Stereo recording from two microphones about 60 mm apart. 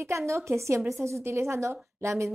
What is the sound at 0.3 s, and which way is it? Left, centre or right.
A woman's voice, right.